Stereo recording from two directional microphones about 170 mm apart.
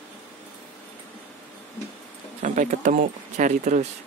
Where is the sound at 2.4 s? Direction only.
45° right (ahead or behind).